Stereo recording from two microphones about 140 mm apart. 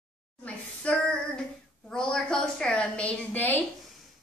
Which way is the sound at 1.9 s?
5° left (ahead or behind).